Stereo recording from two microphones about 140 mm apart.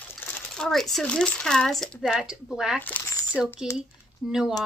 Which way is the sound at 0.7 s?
Centre (ahead or behind).